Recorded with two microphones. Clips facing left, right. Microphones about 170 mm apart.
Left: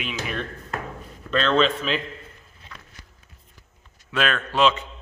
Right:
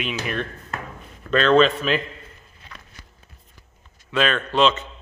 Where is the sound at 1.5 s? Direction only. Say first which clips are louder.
Right 5 dB; 10° right (ahead or behind).